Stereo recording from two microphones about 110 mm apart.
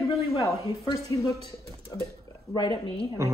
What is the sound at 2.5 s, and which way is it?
Speech, 40° left (ahead or behind).